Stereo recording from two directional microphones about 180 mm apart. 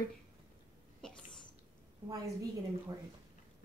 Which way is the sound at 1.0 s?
5° left (ahead or behind).